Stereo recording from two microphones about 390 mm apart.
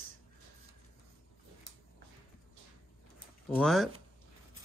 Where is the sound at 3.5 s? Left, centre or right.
Centre.